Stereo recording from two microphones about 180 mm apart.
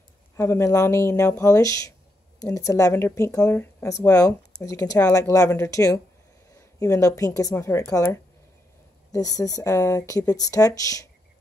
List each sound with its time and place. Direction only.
0.4 s a woman's voice: 15° left (ahead or behind)